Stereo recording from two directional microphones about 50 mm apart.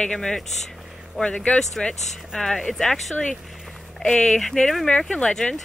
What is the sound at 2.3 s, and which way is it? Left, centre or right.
Speech, centre.